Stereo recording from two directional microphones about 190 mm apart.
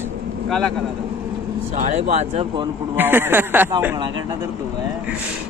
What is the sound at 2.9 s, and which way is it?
Speech, 10° right (ahead or behind).